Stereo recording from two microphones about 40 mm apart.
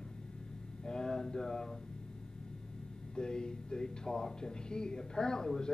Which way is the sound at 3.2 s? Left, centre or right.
Centre.